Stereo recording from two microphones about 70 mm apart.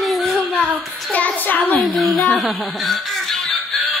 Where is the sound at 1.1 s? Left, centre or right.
Left.